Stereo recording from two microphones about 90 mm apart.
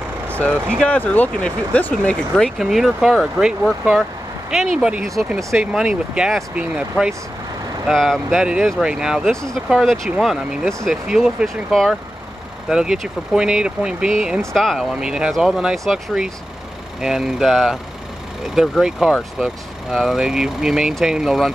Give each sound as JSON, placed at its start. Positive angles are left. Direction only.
{"t": 0.3, "sound": "vehicle", "side_deg": 15}
{"t": 0.8, "sound": "speech", "side_deg": 15}
{"t": 2.6, "sound": "speech", "side_deg": -5}
{"t": 7.9, "sound": "speech", "side_deg": 0}
{"t": 9.3, "sound": "speech", "side_deg": 5}
{"t": 11.1, "sound": "speech", "side_deg": -5}
{"t": 14.4, "sound": "speech", "side_deg": 5}